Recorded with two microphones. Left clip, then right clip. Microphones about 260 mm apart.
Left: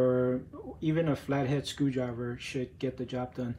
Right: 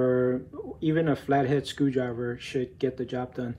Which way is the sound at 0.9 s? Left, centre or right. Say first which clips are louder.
Right 6 dB; right.